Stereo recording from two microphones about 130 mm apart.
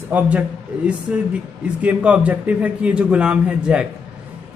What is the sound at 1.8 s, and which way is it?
A man's voice, 10° right (ahead or behind).